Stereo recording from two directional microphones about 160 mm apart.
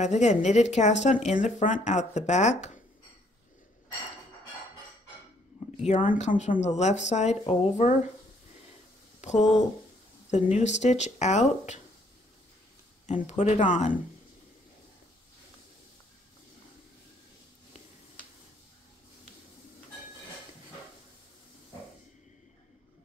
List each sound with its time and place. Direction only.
0.0 s speech: 45° left (ahead or behind)
5.9 s speech: 50° left (ahead or behind)
9.2 s speech: 45° left (ahead or behind)
10.5 s speech: 45° left (ahead or behind)
13.0 s speech: 45° left (ahead or behind)